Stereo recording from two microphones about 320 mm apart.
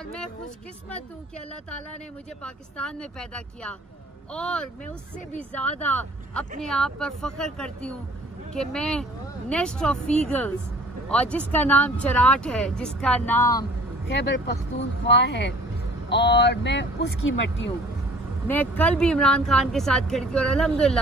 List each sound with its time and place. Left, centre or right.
0.0 s speech: centre
2.4 s speech: centre
14.1 s speech: left
18.5 s speech: centre